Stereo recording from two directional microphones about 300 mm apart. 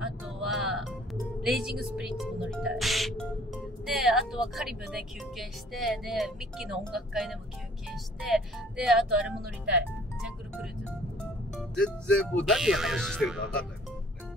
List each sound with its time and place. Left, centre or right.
0.2 s music: centre
1.4 s speech: centre
11.5 s speech: centre